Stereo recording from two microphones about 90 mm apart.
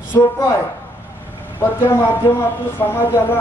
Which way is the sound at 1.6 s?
25° left (ahead or behind).